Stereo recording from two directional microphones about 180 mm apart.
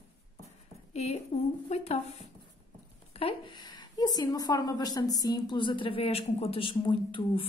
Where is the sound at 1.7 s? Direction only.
35° left (ahead or behind).